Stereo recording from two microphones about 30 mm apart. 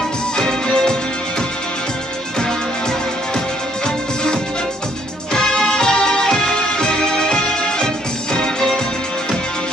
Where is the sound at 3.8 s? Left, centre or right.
Left.